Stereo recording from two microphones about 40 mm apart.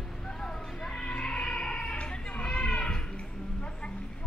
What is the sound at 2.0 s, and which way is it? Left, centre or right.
Children playing, left.